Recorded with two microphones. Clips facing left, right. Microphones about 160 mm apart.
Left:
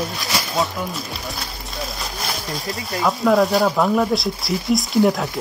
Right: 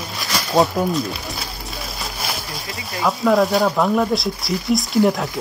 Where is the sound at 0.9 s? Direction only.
Centre (ahead or behind).